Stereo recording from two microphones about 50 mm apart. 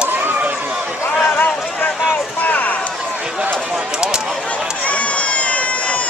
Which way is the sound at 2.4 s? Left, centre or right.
Left.